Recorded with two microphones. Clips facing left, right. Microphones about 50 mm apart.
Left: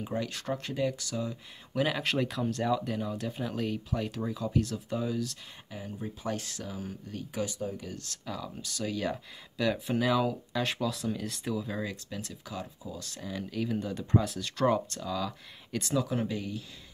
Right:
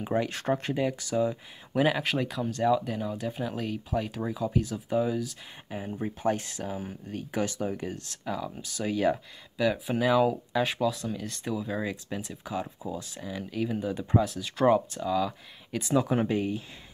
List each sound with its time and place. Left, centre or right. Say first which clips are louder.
0.0 s speech: right 6 dB; right; by 4.1 s centre
4.1 s speech: right 2 dB; centre
5.7 s speech: right 6 dB; right
6.4 s speech: right 4 dB; right
7.3 s speech: right 4 dB; right
7.8 s speech: right 5 dB; right
8.3 s speech: right 5 dB; centre
9.6 s speech: right 2 dB; centre
11.8 s speech: right 4 dB; centre
13.1 s speech: right 1 dB; centre
14.2 s speech: right 3 dB; centre
14.6 s speech: right 4 dB; centre
16.0 s speech: right 7 dB; right